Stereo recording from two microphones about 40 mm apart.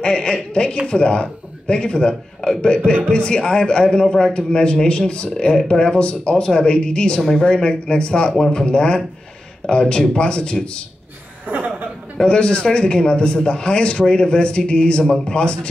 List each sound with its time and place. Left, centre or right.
0.0 s a man's voice: left
11.4 s chuckle: right
12.3 s a man's voice: left